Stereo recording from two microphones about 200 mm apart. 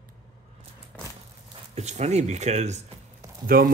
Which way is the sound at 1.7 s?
35° right (ahead or behind).